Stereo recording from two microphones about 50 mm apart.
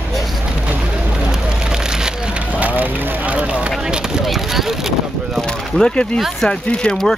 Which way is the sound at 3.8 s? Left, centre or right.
Centre.